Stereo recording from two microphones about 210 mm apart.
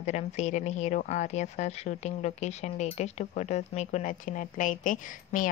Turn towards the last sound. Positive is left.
turn(degrees=40)  # may be behind; listen again after turning